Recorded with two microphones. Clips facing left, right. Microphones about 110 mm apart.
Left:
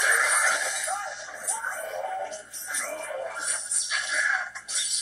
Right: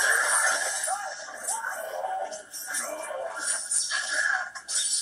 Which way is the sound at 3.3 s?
60° left (ahead or behind).